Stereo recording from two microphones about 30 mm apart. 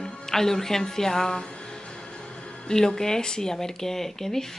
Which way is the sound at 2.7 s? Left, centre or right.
Centre.